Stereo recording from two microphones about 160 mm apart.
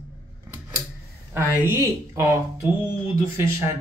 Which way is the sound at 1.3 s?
15° right (ahead or behind).